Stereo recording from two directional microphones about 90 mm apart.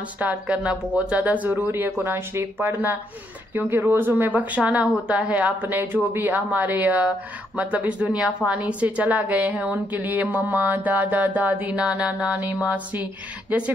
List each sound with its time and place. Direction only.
0.2 s a woman's voice: 15° right (ahead or behind)